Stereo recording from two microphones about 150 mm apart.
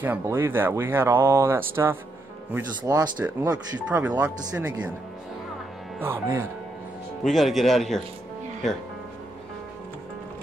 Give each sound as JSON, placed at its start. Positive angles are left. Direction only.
{"t": 0.0, "sound": "speech", "side_deg": -15}
{"t": 3.5, "sound": "speech", "side_deg": -10}
{"t": 5.9, "sound": "speech", "side_deg": -15}
{"t": 7.2, "sound": "speech", "side_deg": 0}